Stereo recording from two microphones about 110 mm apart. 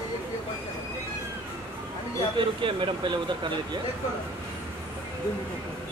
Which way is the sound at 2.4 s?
50° right (ahead or behind).